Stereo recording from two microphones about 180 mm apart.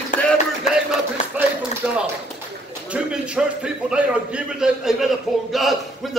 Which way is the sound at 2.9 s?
5° right (ahead or behind).